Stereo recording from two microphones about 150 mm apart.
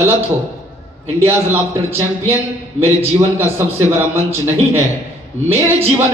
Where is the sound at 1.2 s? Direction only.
15° right (ahead or behind).